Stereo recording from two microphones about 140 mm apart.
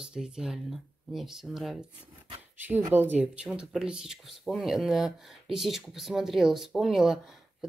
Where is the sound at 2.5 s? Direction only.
15° right (ahead or behind).